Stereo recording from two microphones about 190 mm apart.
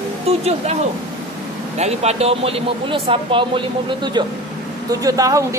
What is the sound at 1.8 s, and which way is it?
A man's voice, 35° right (ahead or behind).